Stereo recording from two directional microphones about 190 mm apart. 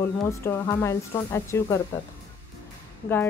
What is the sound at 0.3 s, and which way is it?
Speech, 15° left (ahead or behind).